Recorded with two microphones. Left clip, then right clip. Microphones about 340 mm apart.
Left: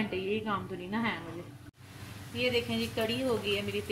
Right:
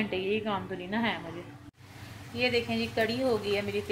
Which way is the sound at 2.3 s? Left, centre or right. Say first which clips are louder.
Right 2 dB; centre.